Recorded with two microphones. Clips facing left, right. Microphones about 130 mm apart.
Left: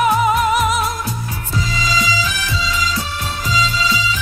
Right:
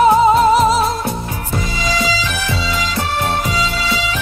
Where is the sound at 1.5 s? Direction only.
60° right (ahead or behind).